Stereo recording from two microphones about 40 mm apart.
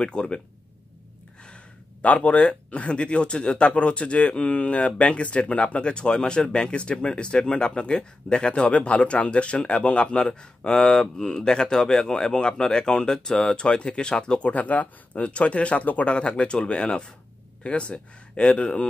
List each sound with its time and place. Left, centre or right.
0.0 s speech: left
1.4 s speech: left
8.6 s speech: left